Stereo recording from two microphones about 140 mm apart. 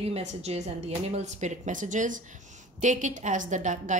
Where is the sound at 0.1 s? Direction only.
55° right (ahead or behind).